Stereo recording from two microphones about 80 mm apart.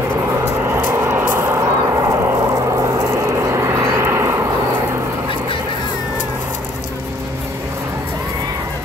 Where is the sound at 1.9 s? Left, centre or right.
Right.